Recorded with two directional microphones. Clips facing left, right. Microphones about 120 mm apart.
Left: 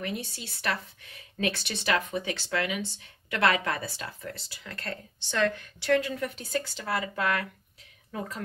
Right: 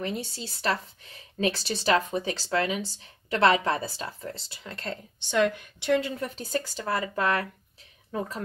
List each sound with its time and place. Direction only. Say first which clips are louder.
0.0 s speech: right 3 dB; 30° right (ahead or behind)
6.5 s speech: right 3 dB; 40° right (ahead or behind)